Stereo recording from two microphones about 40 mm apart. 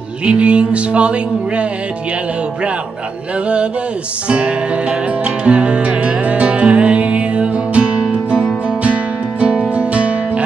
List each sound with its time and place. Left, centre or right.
0.2 s music: right
4.3 s music: right